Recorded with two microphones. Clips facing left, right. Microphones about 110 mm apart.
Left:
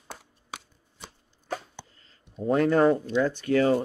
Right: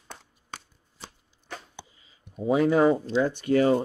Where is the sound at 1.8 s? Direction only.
10° right (ahead or behind).